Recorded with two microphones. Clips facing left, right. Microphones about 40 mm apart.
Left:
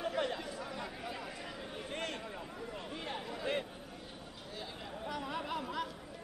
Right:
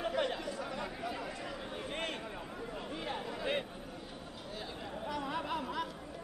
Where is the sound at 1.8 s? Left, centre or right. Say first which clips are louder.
Right 1 dB; right.